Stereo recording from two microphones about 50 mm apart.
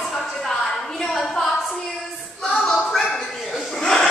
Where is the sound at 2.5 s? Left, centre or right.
Centre.